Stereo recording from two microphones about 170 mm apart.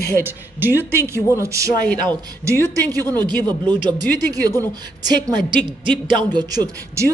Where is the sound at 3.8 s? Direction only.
20° right (ahead or behind).